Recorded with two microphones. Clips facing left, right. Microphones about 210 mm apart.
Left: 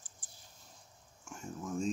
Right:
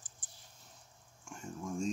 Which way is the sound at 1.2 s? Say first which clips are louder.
Even; 5° left (ahead or behind).